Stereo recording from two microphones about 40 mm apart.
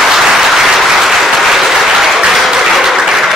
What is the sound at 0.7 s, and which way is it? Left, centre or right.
Applause, centre.